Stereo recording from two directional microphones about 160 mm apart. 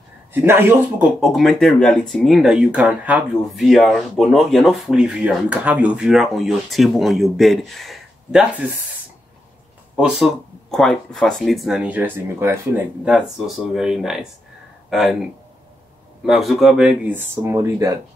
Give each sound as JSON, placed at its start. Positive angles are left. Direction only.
{"t": 0.3, "sound": "speech", "side_deg": -15}
{"t": 1.2, "sound": "speech", "side_deg": 0}
{"t": 9.9, "sound": "speech", "side_deg": -5}
{"t": 16.3, "sound": "speech", "side_deg": 0}